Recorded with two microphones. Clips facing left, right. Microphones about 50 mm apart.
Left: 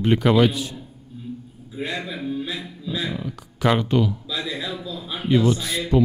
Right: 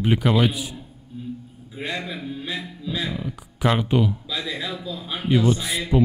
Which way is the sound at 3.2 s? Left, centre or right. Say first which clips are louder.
Left 1 dB; centre.